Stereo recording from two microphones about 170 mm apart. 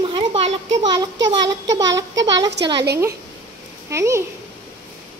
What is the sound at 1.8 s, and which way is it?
Speech, 90° right.